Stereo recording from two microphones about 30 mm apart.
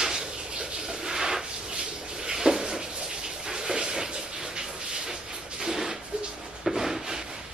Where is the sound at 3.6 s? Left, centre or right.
Right.